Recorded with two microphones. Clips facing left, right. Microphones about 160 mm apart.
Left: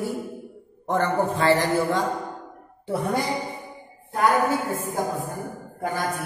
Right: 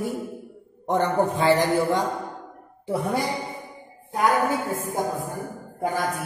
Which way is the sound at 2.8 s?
5° right (ahead or behind).